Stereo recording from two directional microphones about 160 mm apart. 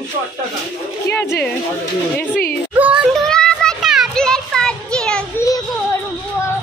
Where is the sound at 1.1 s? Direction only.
15° left (ahead or behind).